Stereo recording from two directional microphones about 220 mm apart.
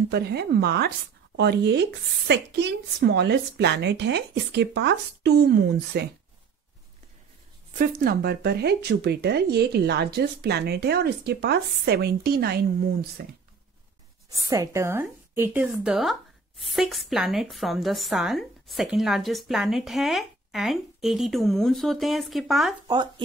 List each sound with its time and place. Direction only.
0.1 s speech: 45° right (ahead or behind)
7.7 s speech: 40° right (ahead or behind)
14.5 s a woman's voice: 15° right (ahead or behind)
22.8 s speech: 20° right (ahead or behind)